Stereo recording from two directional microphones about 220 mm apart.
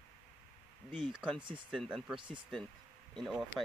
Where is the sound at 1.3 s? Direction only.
20° right (ahead or behind).